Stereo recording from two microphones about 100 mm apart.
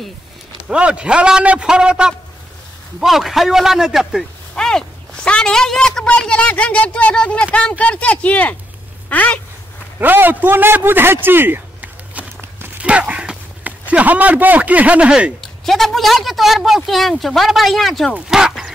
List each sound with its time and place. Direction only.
0.6 s a man's voice: 10° right (ahead or behind); by 9.4 s 15° left (ahead or behind)
9.9 s a man's voice: 20° right (ahead or behind)
15.4 s a woman's voice: 5° left (ahead or behind)